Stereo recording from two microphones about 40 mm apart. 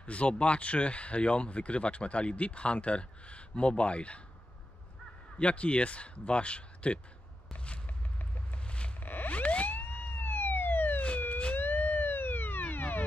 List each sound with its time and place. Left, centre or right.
0.0 s speech: left
5.4 s speech: left
7.5 s a sound: left
9.0 s sidetone: left
9.3 s police car: left
9.8 s police car: left
11.0 s police car: left
11.5 s siren: left